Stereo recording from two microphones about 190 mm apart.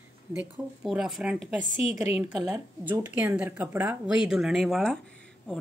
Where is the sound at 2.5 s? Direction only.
15° right (ahead or behind); by 5.0 s centre (ahead or behind).